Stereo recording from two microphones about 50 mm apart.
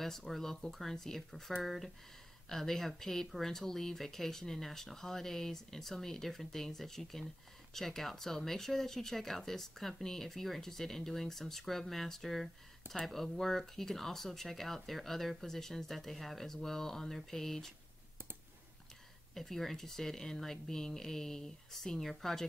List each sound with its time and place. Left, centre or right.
0.0 s speech: centre
19.3 s speech: centre